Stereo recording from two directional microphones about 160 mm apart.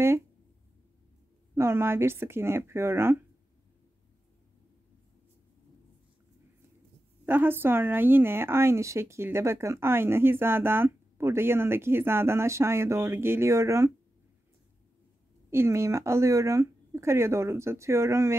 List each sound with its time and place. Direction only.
1.5 s speech: 15° right (ahead or behind)
7.2 s speech: 10° right (ahead or behind)
15.5 s speech: 15° right (ahead or behind)